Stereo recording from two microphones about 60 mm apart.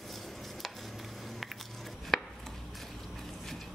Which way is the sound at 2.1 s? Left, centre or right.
Centre.